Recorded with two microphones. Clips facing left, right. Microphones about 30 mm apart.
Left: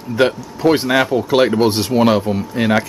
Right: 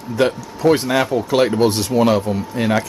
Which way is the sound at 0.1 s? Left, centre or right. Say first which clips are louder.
Left 2 dB; left.